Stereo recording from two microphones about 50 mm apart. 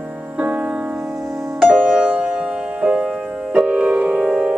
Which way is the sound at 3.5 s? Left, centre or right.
Right.